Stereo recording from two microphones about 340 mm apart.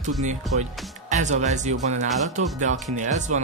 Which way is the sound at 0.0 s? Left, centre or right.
Right.